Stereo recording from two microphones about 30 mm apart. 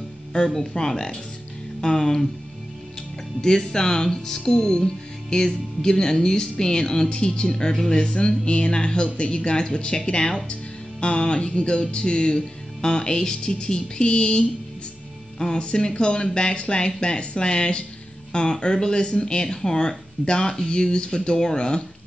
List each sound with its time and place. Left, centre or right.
0.7 s speech: centre
3.3 s speech: left
10.5 s speech: left
15.3 s music: left
15.6 s speech: left